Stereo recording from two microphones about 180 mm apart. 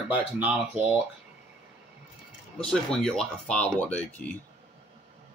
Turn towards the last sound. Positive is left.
turn(degrees=5)  # may be behind; listen again after turning